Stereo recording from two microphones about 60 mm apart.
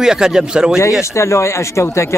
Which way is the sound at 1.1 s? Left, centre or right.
Left.